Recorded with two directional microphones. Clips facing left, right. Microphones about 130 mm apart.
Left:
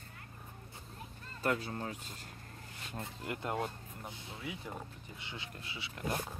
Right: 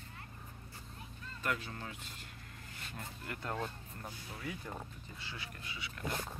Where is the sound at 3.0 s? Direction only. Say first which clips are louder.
Left 5 dB; 20° left (ahead or behind).